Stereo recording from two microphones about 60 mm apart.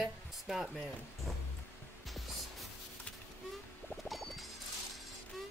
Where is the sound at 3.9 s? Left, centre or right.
Centre.